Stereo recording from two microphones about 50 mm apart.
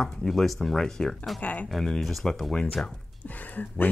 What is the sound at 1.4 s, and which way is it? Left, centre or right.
Speech, left.